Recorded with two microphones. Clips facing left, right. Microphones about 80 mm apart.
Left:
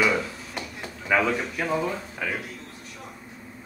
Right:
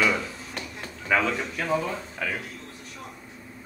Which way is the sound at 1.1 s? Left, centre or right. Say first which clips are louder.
Left 1 dB; centre.